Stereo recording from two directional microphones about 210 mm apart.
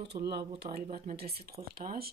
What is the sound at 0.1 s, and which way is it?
A woman's voice, 50° right (ahead or behind).